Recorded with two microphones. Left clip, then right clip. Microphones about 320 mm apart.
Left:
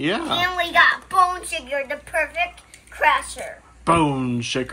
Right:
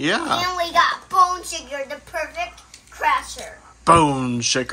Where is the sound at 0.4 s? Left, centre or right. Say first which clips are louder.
Left 5 dB; centre.